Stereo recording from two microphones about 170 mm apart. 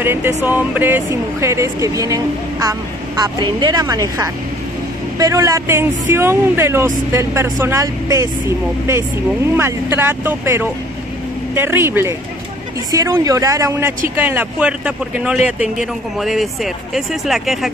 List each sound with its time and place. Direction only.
0.0 s music: 15° right (ahead or behind)
0.5 s speech: 10° right (ahead or behind)
9.6 s speech: 15° right (ahead or behind)